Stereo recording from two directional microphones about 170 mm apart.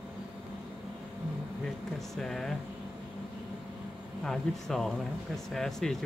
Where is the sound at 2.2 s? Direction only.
Centre (ahead or behind).